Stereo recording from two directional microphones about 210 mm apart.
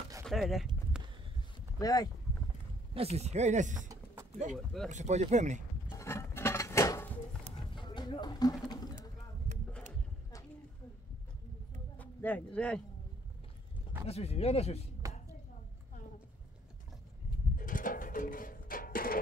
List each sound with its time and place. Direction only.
0.2 s speech: centre (ahead or behind)
1.8 s speech: 15° left (ahead or behind)
2.9 s speech: 30° right (ahead or behind)
3.9 s a sound: 15° right (ahead or behind)
4.8 s speech: 35° right (ahead or behind)
5.9 s a sound: 10° left (ahead or behind)
12.0 s speech: 10° left (ahead or behind)
14.0 s speech: 30° left (ahead or behind)
15.0 s a sound: 15° right (ahead or behind)
17.6 s music: 40° left (ahead or behind)